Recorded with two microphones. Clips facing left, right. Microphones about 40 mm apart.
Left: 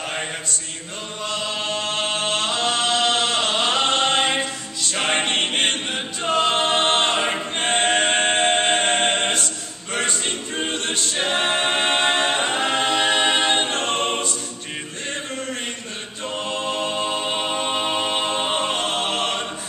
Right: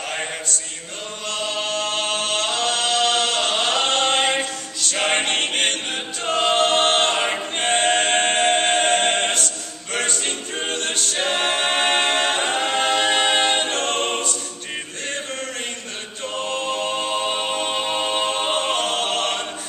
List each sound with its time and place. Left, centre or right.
1.3 s chant: left
1.6 s a capella: left
4.9 s choir: centre
5.2 s choir: left
5.6 s a capella: centre
7.2 s choir: centre
7.6 s a capella: centre
13.4 s choir: centre
16.3 s music: centre
17.1 s a capella: centre
17.6 s music: centre
18.5 s music: centre